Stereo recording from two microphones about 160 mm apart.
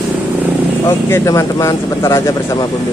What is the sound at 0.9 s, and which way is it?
Speech, 15° left (ahead or behind).